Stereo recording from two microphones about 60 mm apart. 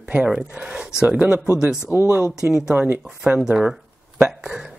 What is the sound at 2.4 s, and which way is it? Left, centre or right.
Speech, right.